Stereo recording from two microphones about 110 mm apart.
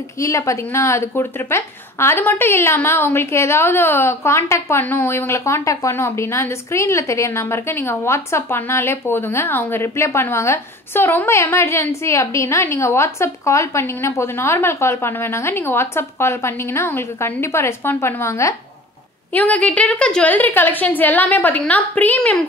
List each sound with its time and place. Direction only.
0.2 s speech: 30° left (ahead or behind)
19.3 s a woman's voice: 10° left (ahead or behind)